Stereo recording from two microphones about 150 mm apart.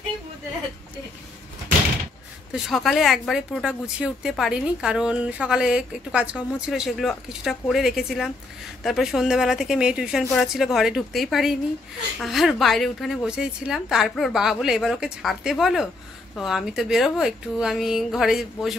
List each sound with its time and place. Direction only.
2.5 s a woman's voice: centre (ahead or behind)